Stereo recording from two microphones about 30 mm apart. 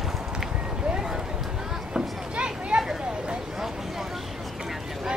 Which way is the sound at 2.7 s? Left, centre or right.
Right.